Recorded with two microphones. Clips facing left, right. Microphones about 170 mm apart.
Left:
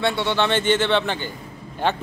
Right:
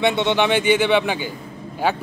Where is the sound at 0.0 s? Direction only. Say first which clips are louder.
Right 3 dB; 20° right (ahead or behind).